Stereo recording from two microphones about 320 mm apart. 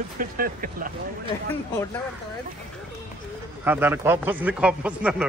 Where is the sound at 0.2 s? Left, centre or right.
Right.